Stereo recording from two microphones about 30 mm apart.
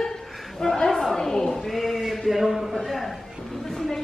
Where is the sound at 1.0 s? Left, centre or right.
Centre.